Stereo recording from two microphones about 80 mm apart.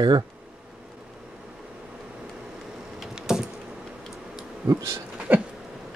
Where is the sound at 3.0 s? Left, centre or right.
Centre.